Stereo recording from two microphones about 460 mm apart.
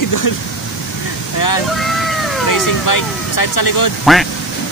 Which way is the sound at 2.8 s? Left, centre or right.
Left.